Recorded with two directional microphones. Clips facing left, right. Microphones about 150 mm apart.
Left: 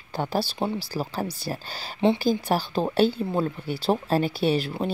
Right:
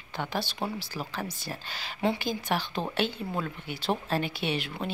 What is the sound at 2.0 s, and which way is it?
Speech, 25° left (ahead or behind).